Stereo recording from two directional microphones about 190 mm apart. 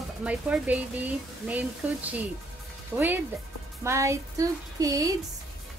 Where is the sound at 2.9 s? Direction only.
10° right (ahead or behind).